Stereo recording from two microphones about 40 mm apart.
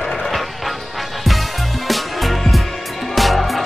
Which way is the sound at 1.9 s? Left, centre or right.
Centre.